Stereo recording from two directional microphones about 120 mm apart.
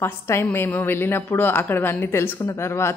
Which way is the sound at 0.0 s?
20° left (ahead or behind).